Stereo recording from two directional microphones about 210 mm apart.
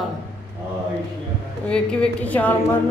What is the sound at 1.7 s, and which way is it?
Speech, 5° left (ahead or behind).